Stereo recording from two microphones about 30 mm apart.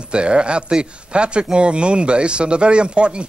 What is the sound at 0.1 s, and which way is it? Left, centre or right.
Speech, right.